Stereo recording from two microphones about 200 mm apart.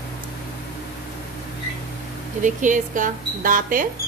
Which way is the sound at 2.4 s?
40° right (ahead or behind).